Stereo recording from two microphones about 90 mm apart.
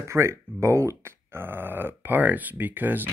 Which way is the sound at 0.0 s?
30° right (ahead or behind).